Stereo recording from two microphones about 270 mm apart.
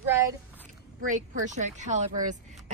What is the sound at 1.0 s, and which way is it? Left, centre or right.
A woman's voice, right.